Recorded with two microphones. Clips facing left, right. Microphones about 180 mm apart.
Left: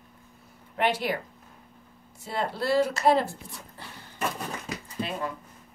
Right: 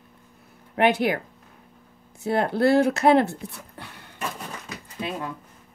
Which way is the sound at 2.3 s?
60° right (ahead or behind).